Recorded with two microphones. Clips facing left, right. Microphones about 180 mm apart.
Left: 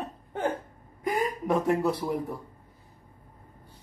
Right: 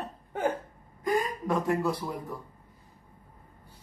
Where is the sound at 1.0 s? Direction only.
20° left (ahead or behind).